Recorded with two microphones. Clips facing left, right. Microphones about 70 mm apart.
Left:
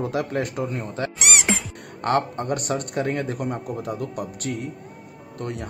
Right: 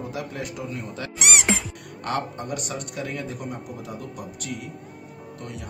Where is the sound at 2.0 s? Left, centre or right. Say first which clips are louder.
Left 6 dB; left.